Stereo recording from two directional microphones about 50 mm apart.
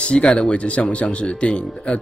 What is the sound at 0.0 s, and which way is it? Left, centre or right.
Speech, left.